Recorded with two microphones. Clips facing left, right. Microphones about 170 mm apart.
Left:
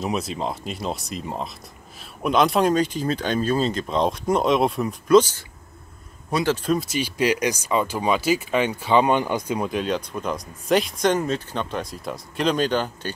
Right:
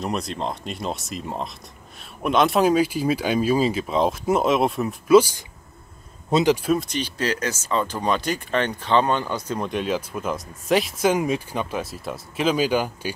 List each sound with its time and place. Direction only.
0.0 s speech: centre (ahead or behind)
6.9 s speech: 10° left (ahead or behind); by 13.1 s 10° right (ahead or behind)